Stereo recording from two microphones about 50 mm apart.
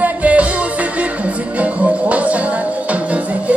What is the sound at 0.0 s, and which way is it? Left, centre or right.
Music, right.